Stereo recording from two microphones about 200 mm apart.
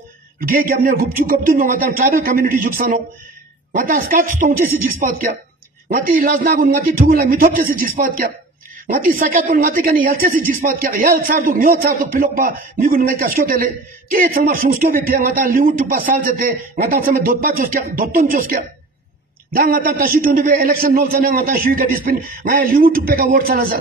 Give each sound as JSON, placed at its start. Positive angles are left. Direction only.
{"t": 0.4, "sound": "a woman's voice", "side_deg": -45}